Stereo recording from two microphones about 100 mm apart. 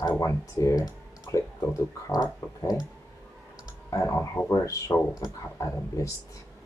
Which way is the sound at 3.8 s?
35° left (ahead or behind).